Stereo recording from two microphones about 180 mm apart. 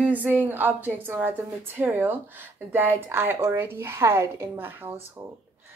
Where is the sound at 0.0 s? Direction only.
10° right (ahead or behind).